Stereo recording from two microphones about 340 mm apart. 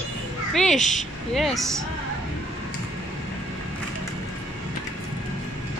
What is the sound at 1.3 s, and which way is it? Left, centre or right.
Speech, centre.